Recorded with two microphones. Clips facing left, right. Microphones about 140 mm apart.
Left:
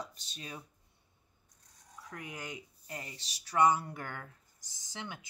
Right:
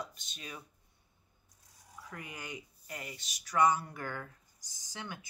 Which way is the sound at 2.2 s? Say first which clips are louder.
Left 2 dB; 20° left (ahead or behind).